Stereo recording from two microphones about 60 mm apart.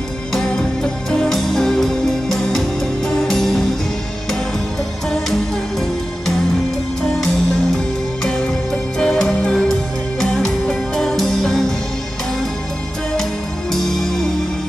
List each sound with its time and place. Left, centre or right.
0.3 s music: centre
5.1 s music: centre
7.7 s music: centre
13.1 s music: centre